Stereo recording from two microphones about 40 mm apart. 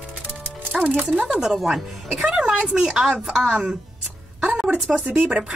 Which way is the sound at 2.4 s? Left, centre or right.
Right.